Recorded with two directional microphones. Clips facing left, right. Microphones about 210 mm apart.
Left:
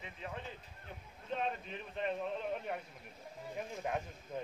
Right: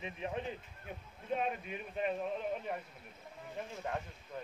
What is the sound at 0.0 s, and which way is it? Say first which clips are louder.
Speech: right 6 dB; 20° right (ahead or behind).